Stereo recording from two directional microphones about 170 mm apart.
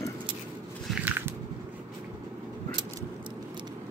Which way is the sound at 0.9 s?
10° right (ahead or behind).